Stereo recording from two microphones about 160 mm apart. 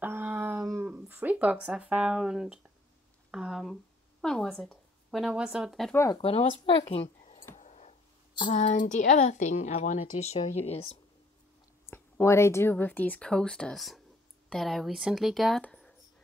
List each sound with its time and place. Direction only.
0.0 s dog: 15° right (ahead or behind)
0.8 s speech: 10° right (ahead or behind)
6.1 s speech: 35° left (ahead or behind)
7.5 s a sound: 45° left (ahead or behind)
8.5 s speech: 50° left (ahead or behind)
11.8 s speech: 15° left (ahead or behind)